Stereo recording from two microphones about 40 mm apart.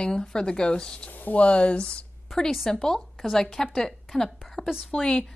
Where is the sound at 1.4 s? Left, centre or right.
Left.